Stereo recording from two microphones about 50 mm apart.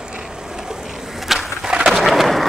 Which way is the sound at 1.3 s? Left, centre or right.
Centre.